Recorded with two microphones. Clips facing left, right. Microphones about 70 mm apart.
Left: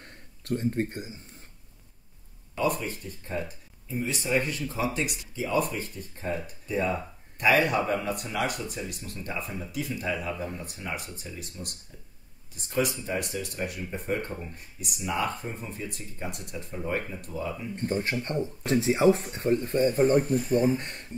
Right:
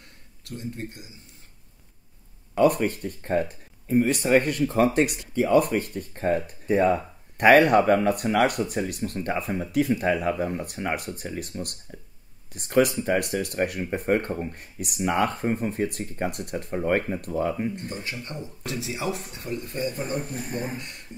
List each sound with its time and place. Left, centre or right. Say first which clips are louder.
0.0 s a sound: left 4 dB; left
2.5 s speech: right 8 dB; right
17.7 s speech: left 5 dB; left
20.3 s speech: left 8 dB; right
20.7 s speech: left 5 dB; left